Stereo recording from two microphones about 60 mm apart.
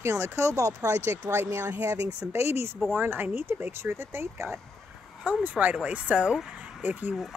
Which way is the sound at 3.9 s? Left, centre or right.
Right.